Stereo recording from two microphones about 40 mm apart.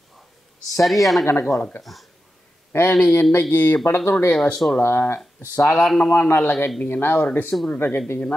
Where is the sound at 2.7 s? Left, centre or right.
Left.